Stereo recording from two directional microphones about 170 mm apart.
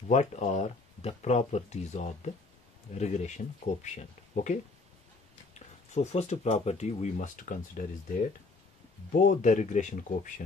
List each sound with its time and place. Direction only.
0.1 s speech: 40° left (ahead or behind)
9.1 s speech: 55° left (ahead or behind)